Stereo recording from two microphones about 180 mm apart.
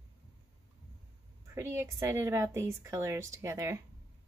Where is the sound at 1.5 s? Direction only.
15° right (ahead or behind).